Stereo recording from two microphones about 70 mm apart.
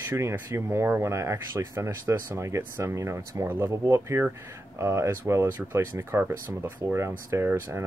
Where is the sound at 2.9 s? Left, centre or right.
Right.